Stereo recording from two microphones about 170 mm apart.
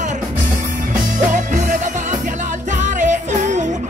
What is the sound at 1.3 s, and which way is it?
Music, 50° right (ahead or behind).